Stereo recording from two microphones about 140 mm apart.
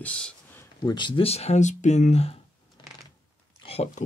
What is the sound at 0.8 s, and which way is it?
Speech, 35° left (ahead or behind).